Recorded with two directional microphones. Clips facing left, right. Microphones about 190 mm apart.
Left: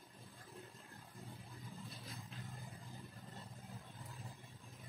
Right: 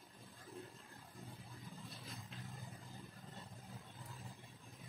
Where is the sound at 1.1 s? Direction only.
Centre (ahead or behind).